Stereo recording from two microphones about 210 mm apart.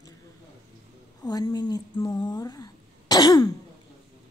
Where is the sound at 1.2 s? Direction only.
20° left (ahead or behind).